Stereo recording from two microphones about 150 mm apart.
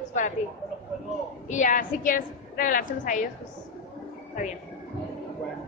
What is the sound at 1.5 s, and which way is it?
A woman's voice, 60° left (ahead or behind).